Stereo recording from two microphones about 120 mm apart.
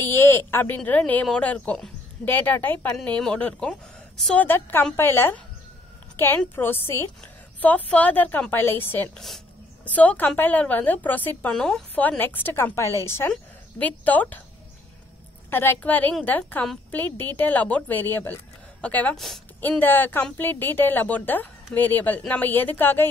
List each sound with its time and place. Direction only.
0.1 s a woman's voice: 20° left (ahead or behind)
4.5 s a woman's voice: 20° left (ahead or behind)
13.3 s speech: 10° left (ahead or behind)
15.5 s a woman's voice: 20° left (ahead or behind)
19.1 s a woman's voice: centre (ahead or behind)
19.8 s a woman's voice: 15° left (ahead or behind)